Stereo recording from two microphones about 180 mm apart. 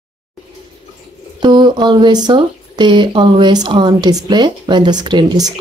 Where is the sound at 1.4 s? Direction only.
25° right (ahead or behind).